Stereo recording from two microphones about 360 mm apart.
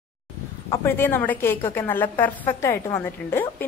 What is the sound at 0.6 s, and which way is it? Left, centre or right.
A woman's voice, centre.